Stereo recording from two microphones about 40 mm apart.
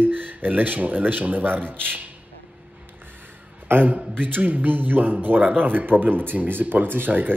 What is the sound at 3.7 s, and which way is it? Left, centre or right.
Speech, right.